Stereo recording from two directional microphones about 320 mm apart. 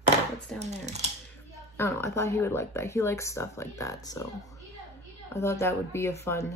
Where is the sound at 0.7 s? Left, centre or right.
Right.